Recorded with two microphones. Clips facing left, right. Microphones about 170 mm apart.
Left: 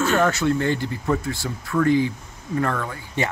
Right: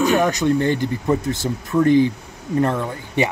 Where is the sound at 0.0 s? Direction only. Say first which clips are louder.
Right 3 dB; 15° right (ahead or behind).